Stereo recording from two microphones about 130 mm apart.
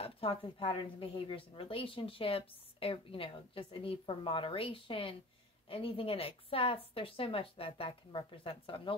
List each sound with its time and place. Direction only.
0.0 s a woman's voice: 45° left (ahead or behind)